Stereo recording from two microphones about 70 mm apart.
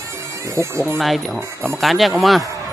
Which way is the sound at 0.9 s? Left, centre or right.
Centre.